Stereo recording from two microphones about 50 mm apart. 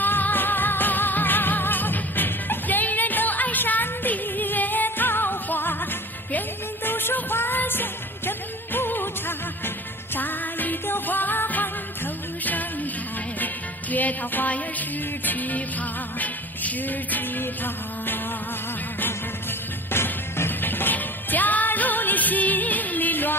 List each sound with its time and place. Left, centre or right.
0.0 s music: left
10.1 s music: left
13.9 s music: left
19.9 s music: left